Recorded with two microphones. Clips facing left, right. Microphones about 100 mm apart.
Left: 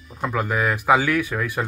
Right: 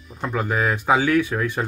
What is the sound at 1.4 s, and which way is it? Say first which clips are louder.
Speech: right 1 dB; 5° left (ahead or behind).